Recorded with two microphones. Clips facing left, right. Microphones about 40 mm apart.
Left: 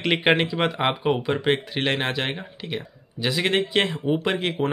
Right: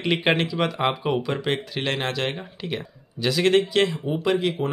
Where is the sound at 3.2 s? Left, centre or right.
Centre.